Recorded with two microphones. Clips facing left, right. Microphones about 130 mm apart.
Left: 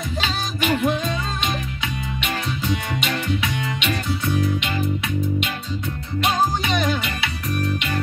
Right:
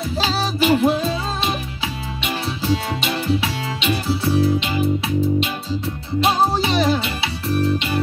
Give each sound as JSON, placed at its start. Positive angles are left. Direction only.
{"t": 0.2, "sound": "music", "side_deg": -35}
{"t": 2.6, "sound": "music", "side_deg": -30}
{"t": 6.2, "sound": "music", "side_deg": -30}